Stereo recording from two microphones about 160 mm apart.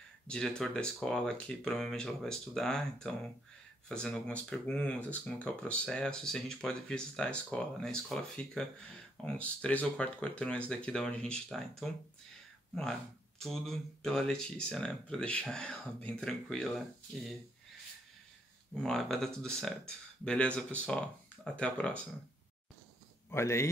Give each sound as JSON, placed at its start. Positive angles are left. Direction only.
{"t": 0.3, "sound": "speech", "side_deg": 5}
{"t": 13.4, "sound": "speech", "side_deg": 0}
{"t": 18.8, "sound": "speech", "side_deg": 5}
{"t": 23.3, "sound": "speech", "side_deg": 15}